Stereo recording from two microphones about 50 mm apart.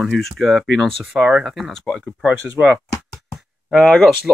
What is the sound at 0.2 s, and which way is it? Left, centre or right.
Speech, centre.